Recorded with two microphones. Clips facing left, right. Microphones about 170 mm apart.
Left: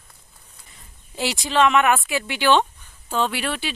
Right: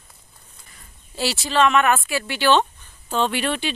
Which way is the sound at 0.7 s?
15° left (ahead or behind).